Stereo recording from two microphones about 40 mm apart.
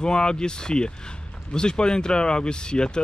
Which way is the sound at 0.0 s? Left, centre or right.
Left.